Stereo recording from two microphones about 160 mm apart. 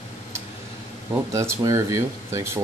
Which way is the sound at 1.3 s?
20° right (ahead or behind).